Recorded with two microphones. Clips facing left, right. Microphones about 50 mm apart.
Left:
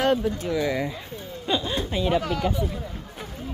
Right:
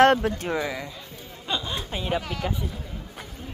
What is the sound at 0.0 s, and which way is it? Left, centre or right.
Speech, right.